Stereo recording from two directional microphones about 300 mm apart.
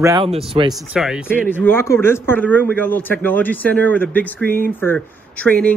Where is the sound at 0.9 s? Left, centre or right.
Centre.